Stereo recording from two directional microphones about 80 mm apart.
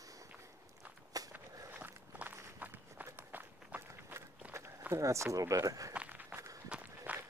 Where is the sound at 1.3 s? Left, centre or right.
Right.